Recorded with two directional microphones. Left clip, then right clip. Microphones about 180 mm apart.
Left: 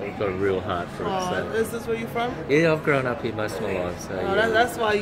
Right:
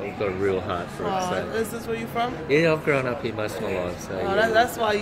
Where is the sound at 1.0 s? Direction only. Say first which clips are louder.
Right 1 dB; 15° right (ahead or behind).